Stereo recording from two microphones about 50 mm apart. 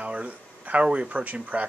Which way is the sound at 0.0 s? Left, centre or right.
Right.